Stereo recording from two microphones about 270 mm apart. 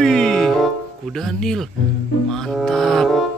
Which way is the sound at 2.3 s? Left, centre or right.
Centre.